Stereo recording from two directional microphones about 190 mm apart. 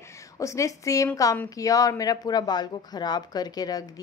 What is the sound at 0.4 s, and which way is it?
A woman's voice, 15° left (ahead or behind).